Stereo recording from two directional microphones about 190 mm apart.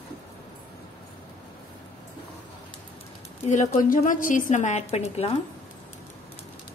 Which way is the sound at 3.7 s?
45° left (ahead or behind).